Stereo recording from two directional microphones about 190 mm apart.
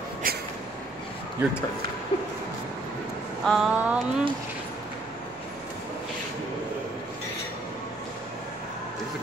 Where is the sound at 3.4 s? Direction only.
Centre (ahead or behind).